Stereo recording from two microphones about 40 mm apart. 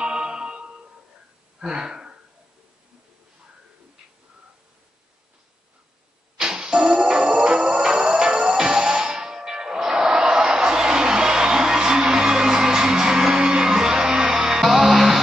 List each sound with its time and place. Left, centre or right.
0.0 s music: right
1.6 s a sound: centre
6.3 s music: centre
7.5 s music: right; by 15.2 s centre